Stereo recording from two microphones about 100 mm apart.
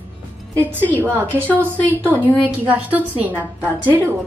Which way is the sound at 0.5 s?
15° left (ahead or behind).